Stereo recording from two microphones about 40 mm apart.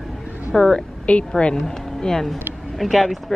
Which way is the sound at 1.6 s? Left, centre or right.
Centre.